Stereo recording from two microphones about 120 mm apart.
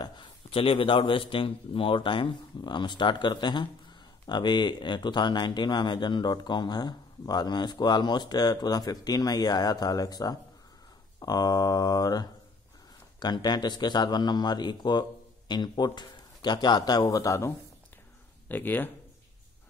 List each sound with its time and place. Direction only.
0.0 s a man's voice: 45° left (ahead or behind); by 18.9 s 15° left (ahead or behind)